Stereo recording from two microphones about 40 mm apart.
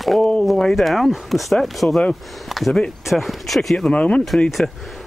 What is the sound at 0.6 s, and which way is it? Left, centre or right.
Speech, centre.